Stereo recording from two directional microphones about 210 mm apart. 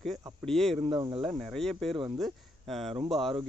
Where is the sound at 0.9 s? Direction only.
20° right (ahead or behind).